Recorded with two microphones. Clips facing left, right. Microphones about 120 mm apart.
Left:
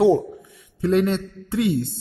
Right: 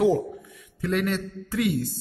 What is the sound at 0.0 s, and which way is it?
A man's voice, 30° left (ahead or behind).